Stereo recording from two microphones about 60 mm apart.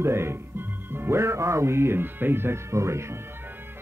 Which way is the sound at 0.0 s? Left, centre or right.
Right.